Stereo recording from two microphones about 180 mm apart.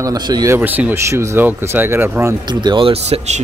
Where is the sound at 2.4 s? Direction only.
25° right (ahead or behind).